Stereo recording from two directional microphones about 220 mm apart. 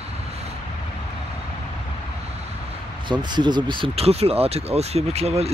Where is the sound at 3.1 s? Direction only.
20° right (ahead or behind).